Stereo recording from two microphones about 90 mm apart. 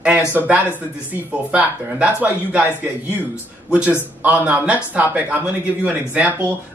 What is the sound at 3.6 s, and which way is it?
Speech, 15° right (ahead or behind).